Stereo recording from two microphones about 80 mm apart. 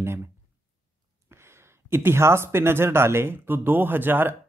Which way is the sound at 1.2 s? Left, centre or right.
Right.